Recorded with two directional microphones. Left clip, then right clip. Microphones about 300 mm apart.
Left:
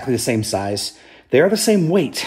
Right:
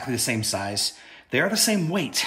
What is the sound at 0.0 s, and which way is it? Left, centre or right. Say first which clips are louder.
Speech: left 7 dB; right.